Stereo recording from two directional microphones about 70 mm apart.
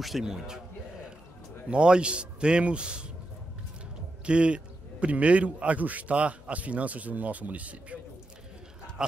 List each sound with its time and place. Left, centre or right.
0.2 s a man's voice: centre
1.7 s a man's voice: centre
4.3 s a man's voice: centre